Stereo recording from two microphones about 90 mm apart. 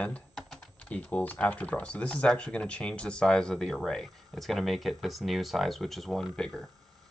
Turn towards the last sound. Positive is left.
turn(degrees=10)  # may be behind; listen again after turning